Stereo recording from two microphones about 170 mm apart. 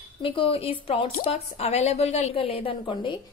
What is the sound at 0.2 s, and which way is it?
A woman's voice, 30° left (ahead or behind).